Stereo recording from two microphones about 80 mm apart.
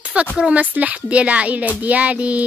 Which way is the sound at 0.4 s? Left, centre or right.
Centre.